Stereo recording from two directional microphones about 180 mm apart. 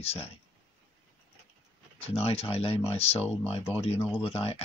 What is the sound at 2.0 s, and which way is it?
Speech, 35° left (ahead or behind).